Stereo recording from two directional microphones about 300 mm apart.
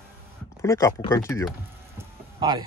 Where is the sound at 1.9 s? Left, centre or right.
Centre.